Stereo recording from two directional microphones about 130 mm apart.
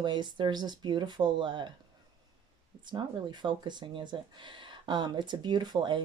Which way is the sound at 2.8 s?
35° right (ahead or behind).